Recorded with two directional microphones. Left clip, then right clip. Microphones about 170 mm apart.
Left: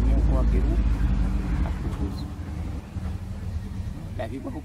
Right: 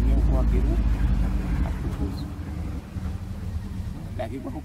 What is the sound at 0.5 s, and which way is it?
Vehicle, 35° right (ahead or behind).